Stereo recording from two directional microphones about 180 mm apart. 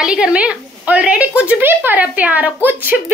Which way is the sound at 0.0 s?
5° right (ahead or behind).